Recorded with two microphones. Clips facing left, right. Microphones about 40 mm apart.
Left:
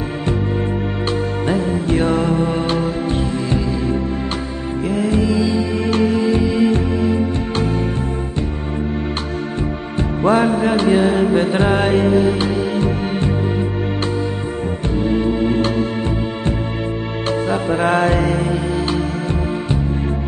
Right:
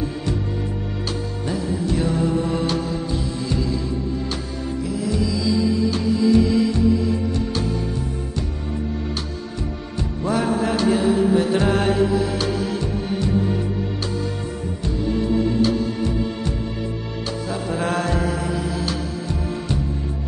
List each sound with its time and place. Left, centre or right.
1.5 s music: left
4.8 s music: left
5.8 s music: left
6.3 s music: left
6.7 s music: left
9.9 s music: left
11.6 s music: left
15.0 s music: left
15.5 s music: left
17.5 s music: left